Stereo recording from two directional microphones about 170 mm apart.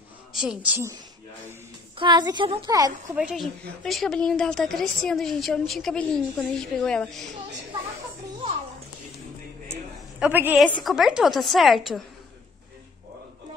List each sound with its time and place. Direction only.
0.3 s a woman's voice: 5° right (ahead or behind)
2.0 s a woman's voice: 25° right (ahead or behind)
3.2 s a woman's voice: 5° right (ahead or behind)
10.1 s a woman's voice: 10° right (ahead or behind)